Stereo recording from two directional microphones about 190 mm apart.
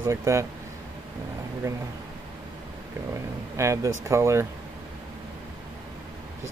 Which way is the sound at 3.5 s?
15° right (ahead or behind).